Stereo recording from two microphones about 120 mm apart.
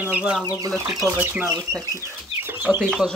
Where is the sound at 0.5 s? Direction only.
30° right (ahead or behind).